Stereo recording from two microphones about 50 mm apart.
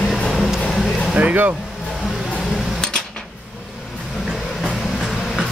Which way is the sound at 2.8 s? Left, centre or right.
Centre.